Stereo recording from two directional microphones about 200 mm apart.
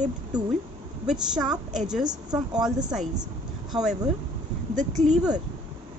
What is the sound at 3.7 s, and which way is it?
Speech, centre (ahead or behind).